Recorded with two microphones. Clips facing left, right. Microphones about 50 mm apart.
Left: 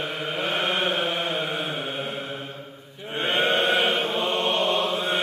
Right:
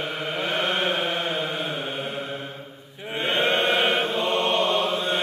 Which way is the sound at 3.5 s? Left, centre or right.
Centre.